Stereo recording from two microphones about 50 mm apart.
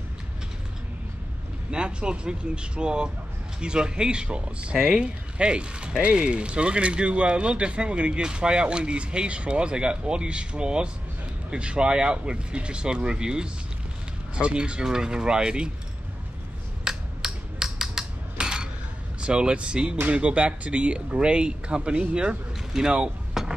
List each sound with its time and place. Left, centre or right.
1.7 s speech: centre
16.8 s a sound: centre
19.2 s speech: centre
22.7 s vehicle: centre